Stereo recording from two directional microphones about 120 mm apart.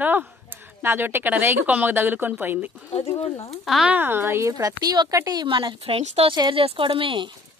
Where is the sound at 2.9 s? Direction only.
55° left (ahead or behind).